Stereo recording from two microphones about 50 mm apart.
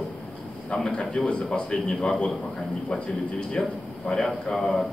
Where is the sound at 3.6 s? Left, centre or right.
Centre.